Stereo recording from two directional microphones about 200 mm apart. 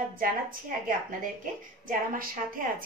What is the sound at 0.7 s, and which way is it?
Speech, 45° right (ahead or behind).